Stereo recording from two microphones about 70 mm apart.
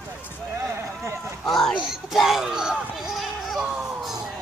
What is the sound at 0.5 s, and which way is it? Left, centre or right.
Run, right.